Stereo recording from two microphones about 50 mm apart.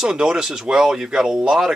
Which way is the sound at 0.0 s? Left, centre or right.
Centre.